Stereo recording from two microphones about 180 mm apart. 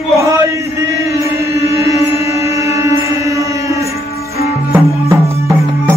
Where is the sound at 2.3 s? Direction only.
15° right (ahead or behind).